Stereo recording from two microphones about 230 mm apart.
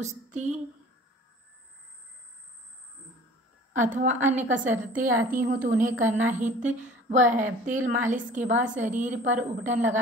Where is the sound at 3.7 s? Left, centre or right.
Right.